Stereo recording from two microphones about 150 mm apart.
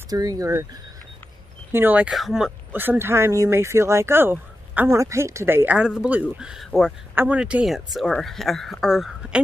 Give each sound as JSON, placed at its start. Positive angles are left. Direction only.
{"t": 0.1, "sound": "speech", "side_deg": -25}
{"t": 1.7, "sound": "speech", "side_deg": -15}
{"t": 2.7, "sound": "speech", "side_deg": -15}